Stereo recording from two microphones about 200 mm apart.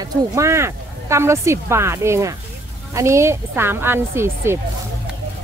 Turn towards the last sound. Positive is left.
turn(degrees=-10)  # may be behind; listen again after turning